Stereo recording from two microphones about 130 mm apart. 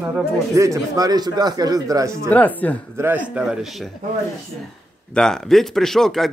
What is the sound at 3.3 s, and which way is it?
Speech, 5° right (ahead or behind).